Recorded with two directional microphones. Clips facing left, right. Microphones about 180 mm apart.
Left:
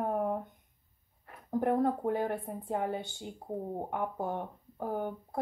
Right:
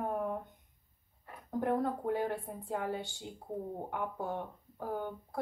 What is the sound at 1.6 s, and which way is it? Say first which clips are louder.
A woman's voice: left 4 dB; 20° left (ahead or behind).